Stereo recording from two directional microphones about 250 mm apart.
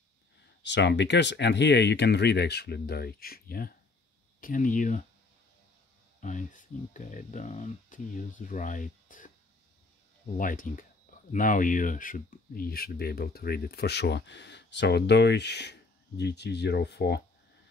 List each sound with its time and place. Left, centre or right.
0.7 s speech: left
6.2 s speech: left
10.3 s speech: left